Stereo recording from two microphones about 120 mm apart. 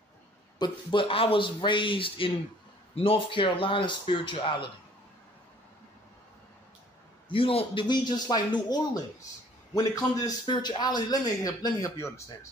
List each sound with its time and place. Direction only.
0.6 s a man's voice: 45° left (ahead or behind)
7.2 s a man's voice: 50° left (ahead or behind); by 10.3 s 30° left (ahead or behind)
10.4 s a man's voice: 40° left (ahead or behind)